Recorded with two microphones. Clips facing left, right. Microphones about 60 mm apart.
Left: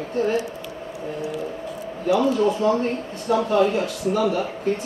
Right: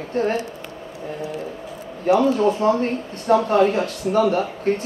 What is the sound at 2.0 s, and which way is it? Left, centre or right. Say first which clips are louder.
Speech: right 2 dB; right.